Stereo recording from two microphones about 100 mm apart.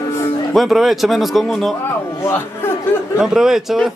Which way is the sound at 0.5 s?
Centre (ahead or behind).